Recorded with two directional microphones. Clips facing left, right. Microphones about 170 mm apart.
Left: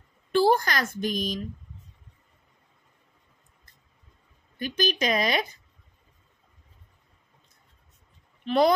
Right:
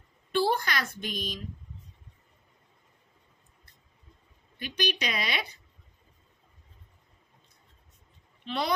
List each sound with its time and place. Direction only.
0.3 s a woman's voice: 45° left (ahead or behind)
4.6 s speech: 45° left (ahead or behind)
8.5 s speech: 45° left (ahead or behind)